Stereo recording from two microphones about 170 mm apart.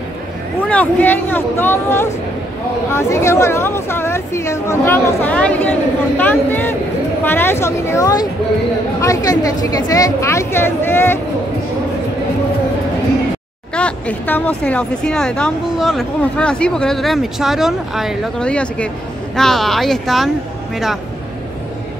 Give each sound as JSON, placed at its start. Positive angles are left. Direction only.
{"t": 0.7, "sound": "speech", "side_deg": 10}
{"t": 13.7, "sound": "speech", "side_deg": 5}